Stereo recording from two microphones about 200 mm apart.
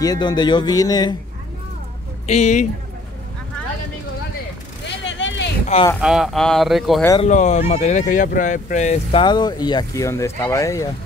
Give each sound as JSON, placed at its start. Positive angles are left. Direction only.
{"t": 0.0, "sound": "speech", "side_deg": 20}
{"t": 2.2, "sound": "speech", "side_deg": 35}
{"t": 5.0, "sound": "vehicle", "side_deg": 65}
{"t": 5.9, "sound": "speech", "side_deg": -5}
{"t": 7.2, "sound": "speech", "side_deg": 35}
{"t": 9.2, "sound": "speech", "side_deg": 20}